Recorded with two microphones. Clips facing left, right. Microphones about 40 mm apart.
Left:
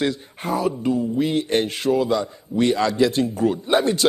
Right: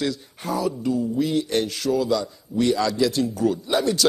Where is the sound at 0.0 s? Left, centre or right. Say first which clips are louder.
Left 3 dB; left.